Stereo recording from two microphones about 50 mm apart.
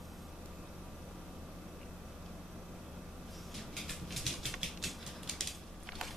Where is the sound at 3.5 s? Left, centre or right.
Centre.